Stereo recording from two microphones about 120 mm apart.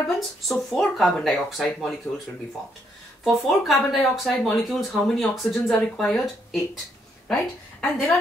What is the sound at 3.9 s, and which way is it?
Speech, centre (ahead or behind).